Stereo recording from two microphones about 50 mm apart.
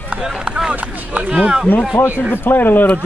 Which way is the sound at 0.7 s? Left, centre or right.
Right.